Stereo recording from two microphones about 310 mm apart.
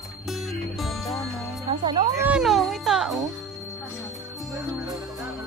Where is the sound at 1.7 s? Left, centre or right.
Centre.